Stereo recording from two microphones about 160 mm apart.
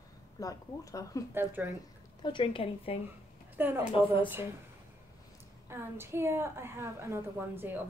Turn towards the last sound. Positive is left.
turn(degrees=-10)  # may be behind; listen again after turning